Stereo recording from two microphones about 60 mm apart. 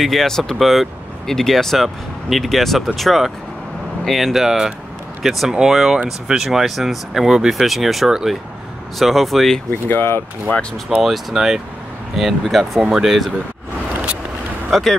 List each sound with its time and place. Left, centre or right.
0.0 s speech: centre
9.8 s speech: left
11.0 s speech: centre
14.7 s speech: centre